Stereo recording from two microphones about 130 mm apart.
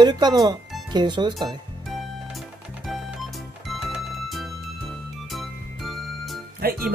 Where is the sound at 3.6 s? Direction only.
Centre (ahead or behind).